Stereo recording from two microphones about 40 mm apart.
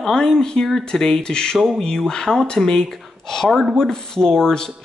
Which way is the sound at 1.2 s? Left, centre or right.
Left.